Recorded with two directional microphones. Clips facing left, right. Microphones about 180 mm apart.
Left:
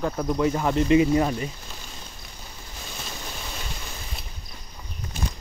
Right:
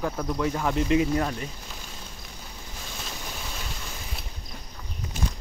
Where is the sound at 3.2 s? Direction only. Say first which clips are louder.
Left 1 dB; centre (ahead or behind).